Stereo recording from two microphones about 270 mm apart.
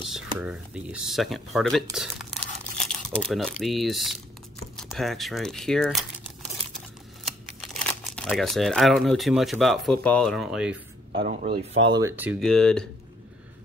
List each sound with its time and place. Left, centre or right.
0.4 s speech: centre
7.2 s speech: centre
11.1 s speech: right
12.2 s speech: centre